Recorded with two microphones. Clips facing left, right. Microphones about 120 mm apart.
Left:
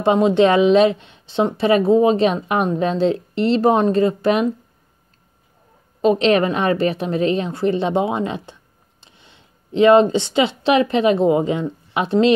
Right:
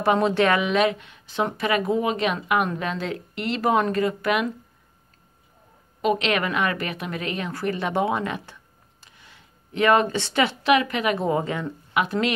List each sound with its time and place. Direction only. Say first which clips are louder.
0.0 s a woman's voice: left 6 dB; 20° left (ahead or behind)
5.9 s a woman's voice: left 8 dB; 30° left (ahead or behind)